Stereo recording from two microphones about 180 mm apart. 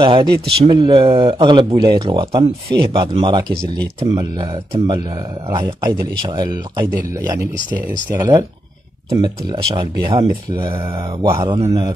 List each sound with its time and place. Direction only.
0.0 s speech: 30° right (ahead or behind)
8.2 s speech: 20° right (ahead or behind)